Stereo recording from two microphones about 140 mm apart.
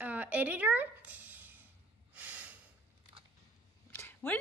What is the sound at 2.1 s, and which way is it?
Snort, 10° right (ahead or behind).